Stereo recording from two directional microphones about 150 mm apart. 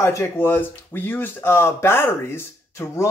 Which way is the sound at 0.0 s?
20° left (ahead or behind).